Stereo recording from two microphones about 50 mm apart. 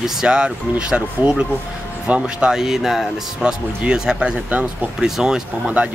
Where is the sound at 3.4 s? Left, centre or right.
Centre.